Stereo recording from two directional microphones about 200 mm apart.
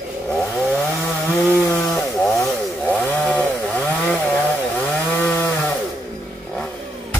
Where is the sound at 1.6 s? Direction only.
5° left (ahead or behind).